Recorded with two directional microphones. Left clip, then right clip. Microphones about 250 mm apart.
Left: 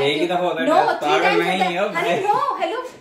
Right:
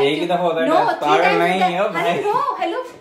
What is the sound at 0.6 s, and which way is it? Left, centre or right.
Speech, centre.